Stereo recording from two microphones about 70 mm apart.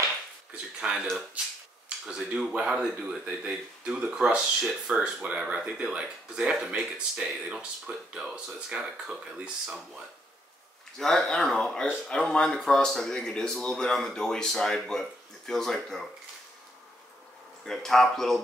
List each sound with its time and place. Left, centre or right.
0.6 s a sound: centre
2.0 s speech: centre
17.6 s a man's voice: centre